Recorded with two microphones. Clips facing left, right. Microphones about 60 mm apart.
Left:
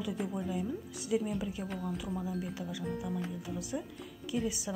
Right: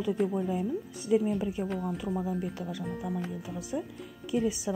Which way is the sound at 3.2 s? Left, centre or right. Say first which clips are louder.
Right 2 dB; centre.